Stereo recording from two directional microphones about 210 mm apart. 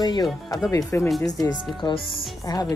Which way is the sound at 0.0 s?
20° left (ahead or behind).